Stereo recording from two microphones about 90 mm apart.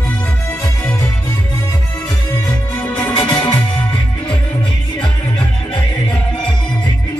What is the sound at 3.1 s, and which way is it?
Music, 55° left (ahead or behind).